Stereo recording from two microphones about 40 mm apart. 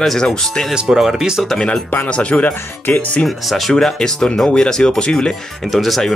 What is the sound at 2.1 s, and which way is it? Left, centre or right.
Speech, left.